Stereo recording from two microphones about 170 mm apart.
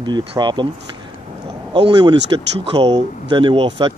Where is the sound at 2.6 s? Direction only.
35° right (ahead or behind).